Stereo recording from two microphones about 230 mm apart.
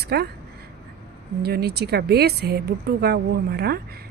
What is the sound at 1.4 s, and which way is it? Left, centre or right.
A woman's voice, right.